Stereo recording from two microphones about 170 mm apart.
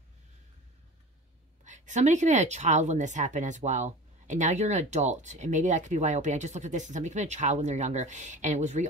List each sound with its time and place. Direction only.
1.6 s speech: 45° right (ahead or behind)